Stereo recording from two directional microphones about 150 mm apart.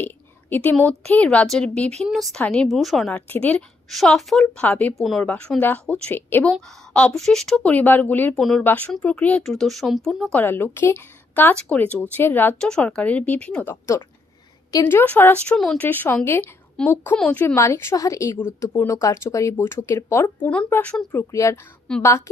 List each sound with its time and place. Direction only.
0.0 s a woman's voice: 10° left (ahead or behind)
10.4 s a woman's voice: 15° left (ahead or behind)
21.1 s speech: 20° left (ahead or behind)